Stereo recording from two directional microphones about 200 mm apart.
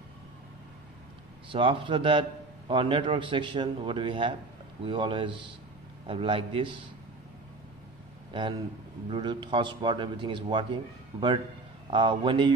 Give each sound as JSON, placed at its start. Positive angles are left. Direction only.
{"t": 1.5, "sound": "speech", "side_deg": -25}
{"t": 8.3, "sound": "speech", "side_deg": -25}